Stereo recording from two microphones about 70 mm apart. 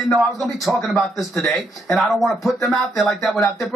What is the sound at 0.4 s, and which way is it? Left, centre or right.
Speech, centre.